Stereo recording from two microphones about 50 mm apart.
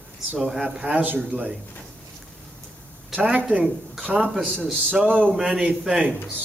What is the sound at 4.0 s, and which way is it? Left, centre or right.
Speech, right.